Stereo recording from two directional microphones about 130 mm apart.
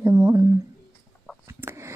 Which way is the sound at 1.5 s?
20° right (ahead or behind).